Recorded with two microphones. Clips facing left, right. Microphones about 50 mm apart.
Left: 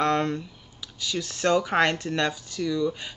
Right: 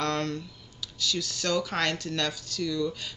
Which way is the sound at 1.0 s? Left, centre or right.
Left.